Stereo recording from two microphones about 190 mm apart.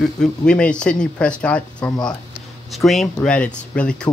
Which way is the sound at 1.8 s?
20° left (ahead or behind).